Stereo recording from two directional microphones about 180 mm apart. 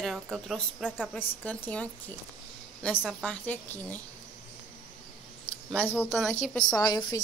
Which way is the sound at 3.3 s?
10° left (ahead or behind).